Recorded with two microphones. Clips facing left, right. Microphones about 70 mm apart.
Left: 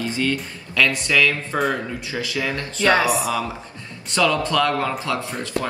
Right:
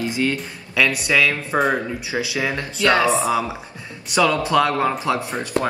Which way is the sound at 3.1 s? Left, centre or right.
Right.